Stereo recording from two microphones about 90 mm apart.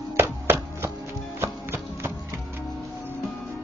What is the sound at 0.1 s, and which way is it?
Chopping, 30° right (ahead or behind).